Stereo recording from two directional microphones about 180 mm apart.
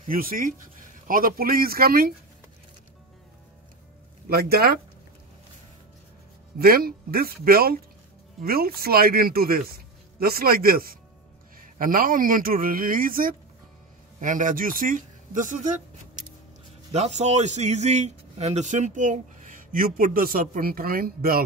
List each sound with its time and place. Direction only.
0.0 s speech: 50° right (ahead or behind)
4.3 s speech: 60° right (ahead or behind)
6.6 s speech: 55° right (ahead or behind)
16.9 s speech: 40° right (ahead or behind); by 21.4 s 55° right (ahead or behind)